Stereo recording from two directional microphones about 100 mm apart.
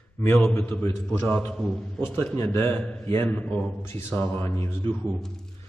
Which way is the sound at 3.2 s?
15° left (ahead or behind).